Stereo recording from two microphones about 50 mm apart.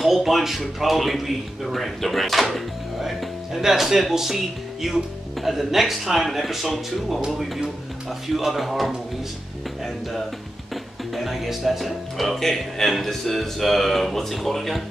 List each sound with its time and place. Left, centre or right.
0.0 s a man's voice: centre
7.2 s music: centre
8.4 s a man's voice: centre
11.1 s a man's voice: centre